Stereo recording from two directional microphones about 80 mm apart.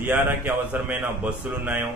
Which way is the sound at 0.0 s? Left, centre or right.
Right.